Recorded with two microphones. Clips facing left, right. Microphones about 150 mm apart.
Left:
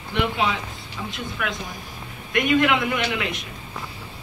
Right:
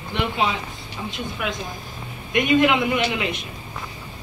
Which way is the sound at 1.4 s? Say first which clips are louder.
Right 1 dB; 20° right (ahead or behind).